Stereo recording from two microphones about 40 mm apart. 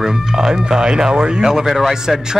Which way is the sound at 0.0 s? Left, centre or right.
Centre.